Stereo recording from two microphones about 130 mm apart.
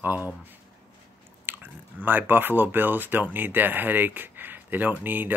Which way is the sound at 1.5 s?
15° right (ahead or behind).